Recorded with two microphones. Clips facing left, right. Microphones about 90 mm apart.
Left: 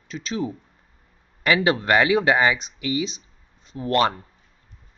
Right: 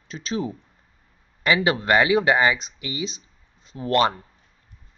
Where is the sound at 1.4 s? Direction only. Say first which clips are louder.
Left 1 dB; centre (ahead or behind).